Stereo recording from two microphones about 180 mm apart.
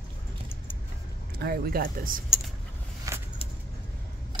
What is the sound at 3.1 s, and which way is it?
Vehicle, 20° right (ahead or behind).